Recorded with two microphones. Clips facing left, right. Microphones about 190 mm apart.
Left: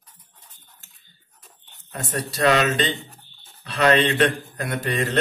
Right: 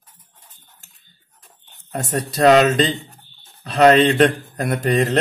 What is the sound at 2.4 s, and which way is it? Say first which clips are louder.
A man's voice: right 7 dB; 40° right (ahead or behind).